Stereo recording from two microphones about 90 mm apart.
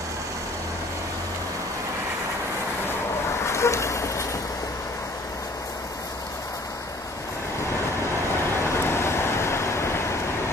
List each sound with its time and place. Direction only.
3.4 s rain: 30° left (ahead or behind)
8.7 s vehicle: 30° left (ahead or behind)